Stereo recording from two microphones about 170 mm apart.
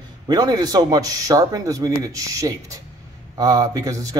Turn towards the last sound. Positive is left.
turn(degrees=-20)  # may be behind; listen again after turning